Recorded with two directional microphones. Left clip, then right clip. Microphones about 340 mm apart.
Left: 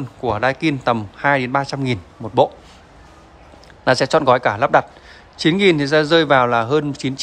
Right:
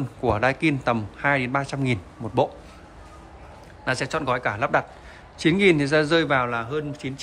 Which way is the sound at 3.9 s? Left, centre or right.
Centre.